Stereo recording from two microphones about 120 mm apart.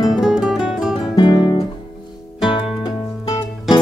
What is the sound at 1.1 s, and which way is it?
Guitar, 40° left (ahead or behind).